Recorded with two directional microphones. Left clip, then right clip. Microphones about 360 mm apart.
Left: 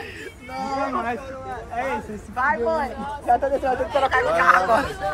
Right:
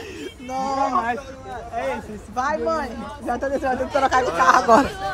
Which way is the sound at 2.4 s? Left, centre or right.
Centre.